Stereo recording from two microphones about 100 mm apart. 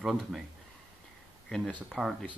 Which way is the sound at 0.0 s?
5° right (ahead or behind).